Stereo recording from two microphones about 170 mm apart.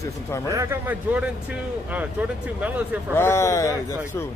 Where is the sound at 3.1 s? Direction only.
15° left (ahead or behind).